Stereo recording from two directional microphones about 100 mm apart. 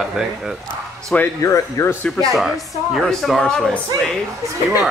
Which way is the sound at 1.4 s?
30° left (ahead or behind).